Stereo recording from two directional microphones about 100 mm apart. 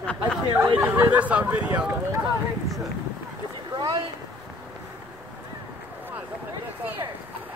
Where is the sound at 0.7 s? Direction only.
20° right (ahead or behind).